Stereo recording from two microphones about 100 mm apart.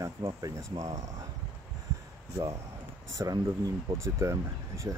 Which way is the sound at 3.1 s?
35° right (ahead or behind).